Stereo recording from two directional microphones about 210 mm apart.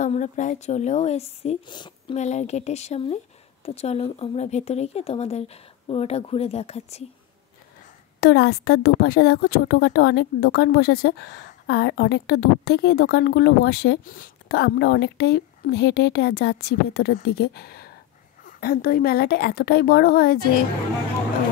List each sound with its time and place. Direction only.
0.0 s speech: 35° left (ahead or behind); by 2.1 s 20° left (ahead or behind)
2.1 s speech: 35° left (ahead or behind)
8.2 s a woman's voice: 50° left (ahead or behind)